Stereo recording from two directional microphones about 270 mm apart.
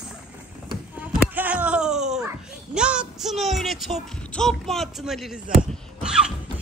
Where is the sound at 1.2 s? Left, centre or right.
Centre.